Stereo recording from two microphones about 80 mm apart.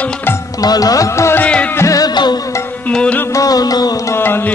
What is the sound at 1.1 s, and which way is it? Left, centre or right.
Music, left.